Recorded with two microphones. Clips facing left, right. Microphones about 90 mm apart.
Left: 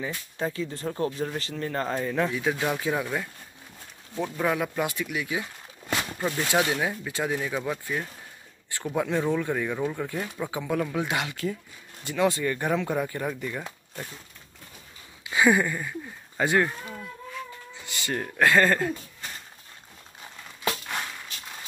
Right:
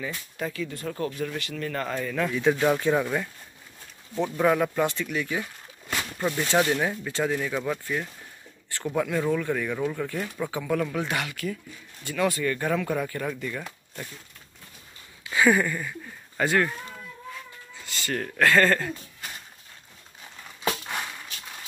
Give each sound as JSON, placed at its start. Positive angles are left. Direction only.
{"t": 0.0, "sound": "speech", "side_deg": 30}
{"t": 2.3, "sound": "speech", "side_deg": 5}
{"t": 8.9, "sound": "speech", "side_deg": 20}
{"t": 15.2, "sound": "a sound", "side_deg": 15}
{"t": 17.7, "sound": "speech", "side_deg": 20}